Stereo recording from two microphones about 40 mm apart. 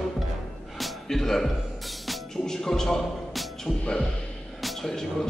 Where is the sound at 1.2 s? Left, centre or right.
Centre.